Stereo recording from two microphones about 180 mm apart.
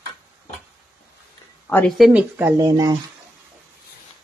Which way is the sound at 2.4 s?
15° right (ahead or behind).